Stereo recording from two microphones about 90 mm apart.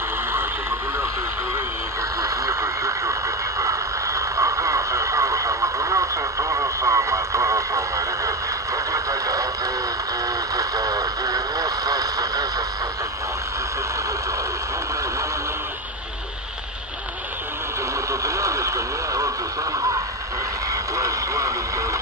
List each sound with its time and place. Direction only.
2.2 s radio: 35° right (ahead or behind)
10.5 s radio: 40° right (ahead or behind)
18.2 s vehicle: 35° right (ahead or behind)
20.9 s radio: 35° right (ahead or behind)